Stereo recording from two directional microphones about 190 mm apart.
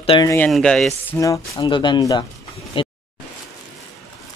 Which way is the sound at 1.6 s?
25° left (ahead or behind).